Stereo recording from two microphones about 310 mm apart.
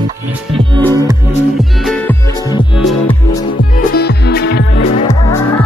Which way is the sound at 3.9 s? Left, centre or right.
Left.